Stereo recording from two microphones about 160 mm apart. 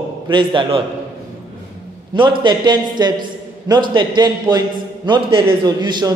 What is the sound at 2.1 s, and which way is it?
A man's voice, 30° right (ahead or behind).